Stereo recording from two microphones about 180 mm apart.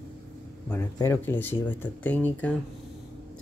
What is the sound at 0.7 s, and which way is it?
Speech, 15° left (ahead or behind).